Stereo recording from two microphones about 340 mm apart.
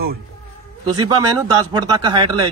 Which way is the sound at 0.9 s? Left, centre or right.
Centre.